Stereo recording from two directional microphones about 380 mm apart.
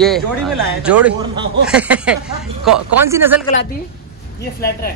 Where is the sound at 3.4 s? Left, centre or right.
Centre.